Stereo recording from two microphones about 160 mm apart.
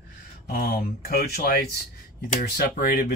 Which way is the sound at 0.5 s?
70° left (ahead or behind).